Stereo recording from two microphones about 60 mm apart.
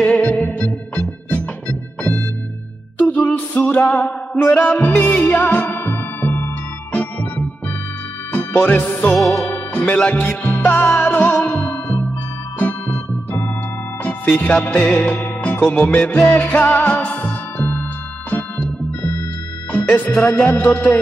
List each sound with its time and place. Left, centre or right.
0.0 s music: left
3.1 s music: left
9.1 s music: centre
9.9 s music: left
11.4 s music: centre
11.7 s music: left
14.0 s music: left
19.7 s speech: left
20.4 s music: left